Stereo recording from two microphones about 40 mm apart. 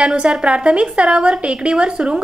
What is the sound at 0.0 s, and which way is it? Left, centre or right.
A woman's voice, right.